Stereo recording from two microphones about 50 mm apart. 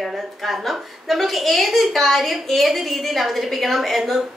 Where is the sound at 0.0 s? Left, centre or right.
Centre.